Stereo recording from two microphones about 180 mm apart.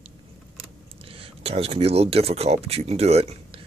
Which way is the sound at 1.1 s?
30° right (ahead or behind).